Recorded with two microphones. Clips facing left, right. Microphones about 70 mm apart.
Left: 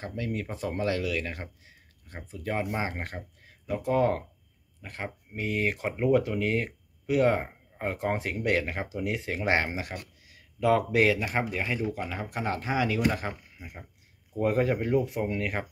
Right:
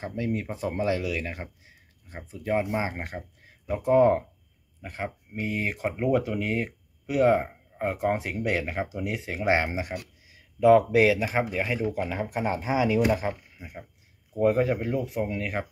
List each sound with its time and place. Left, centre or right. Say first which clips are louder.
0.0 s speech: right 3 dB; centre
13.6 s speech: right 3 dB; centre